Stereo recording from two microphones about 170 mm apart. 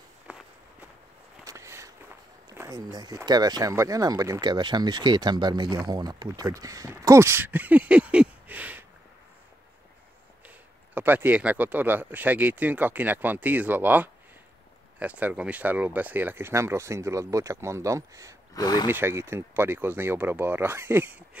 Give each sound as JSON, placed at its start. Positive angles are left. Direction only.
{"t": 0.3, "sound": "walk", "side_deg": -10}
{"t": 1.4, "sound": "a sound", "side_deg": -20}
{"t": 2.5, "sound": "speech", "side_deg": -20}
{"t": 11.0, "sound": "speech", "side_deg": -10}
{"t": 18.5, "sound": "speech", "side_deg": 20}
{"t": 18.9, "sound": "speech", "side_deg": -15}